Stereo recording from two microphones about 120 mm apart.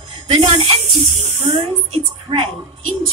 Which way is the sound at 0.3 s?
50° right (ahead or behind).